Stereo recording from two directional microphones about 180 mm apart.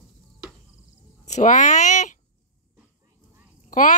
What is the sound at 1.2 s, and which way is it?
Speech, 40° left (ahead or behind).